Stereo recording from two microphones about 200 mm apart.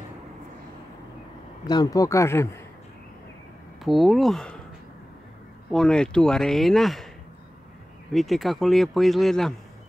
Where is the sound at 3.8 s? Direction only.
Centre (ahead or behind).